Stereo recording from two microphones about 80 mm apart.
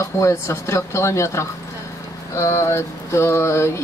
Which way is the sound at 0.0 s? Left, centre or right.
Left.